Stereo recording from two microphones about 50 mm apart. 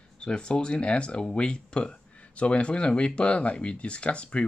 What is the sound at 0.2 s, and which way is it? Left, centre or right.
Speech, centre.